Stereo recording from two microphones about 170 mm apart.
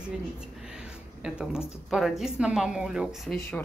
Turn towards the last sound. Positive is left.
turn(degrees=5)  # may be behind; listen again after turning